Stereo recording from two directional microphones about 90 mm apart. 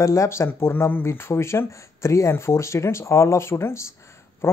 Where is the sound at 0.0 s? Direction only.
35° left (ahead or behind).